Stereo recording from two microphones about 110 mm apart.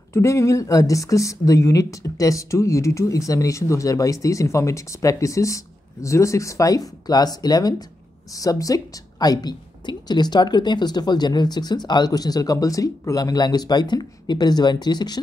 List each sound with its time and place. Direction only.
0.1 s a woman's voice: 25° left (ahead or behind)